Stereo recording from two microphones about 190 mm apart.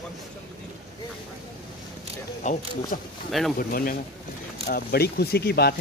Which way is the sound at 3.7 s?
50° left (ahead or behind).